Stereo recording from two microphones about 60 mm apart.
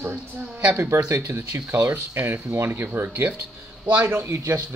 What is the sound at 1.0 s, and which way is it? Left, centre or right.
Speech, right.